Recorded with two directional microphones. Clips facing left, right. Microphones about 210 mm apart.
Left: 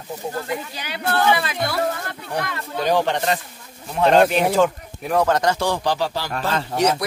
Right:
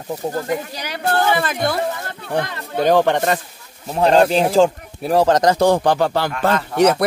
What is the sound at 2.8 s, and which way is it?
Speech, 50° right (ahead or behind).